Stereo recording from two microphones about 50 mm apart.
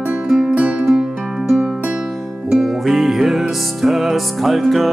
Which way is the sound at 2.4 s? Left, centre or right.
Centre.